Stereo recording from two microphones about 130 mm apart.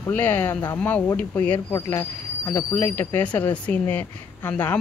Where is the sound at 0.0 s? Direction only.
15° left (ahead or behind).